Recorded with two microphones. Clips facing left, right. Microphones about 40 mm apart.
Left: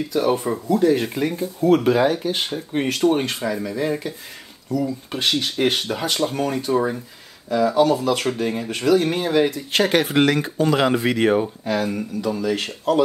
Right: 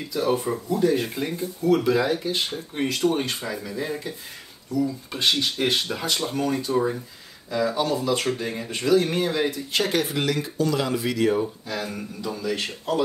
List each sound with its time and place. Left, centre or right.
0.1 s speech: left
0.7 s speech: left
4.6 s speech: left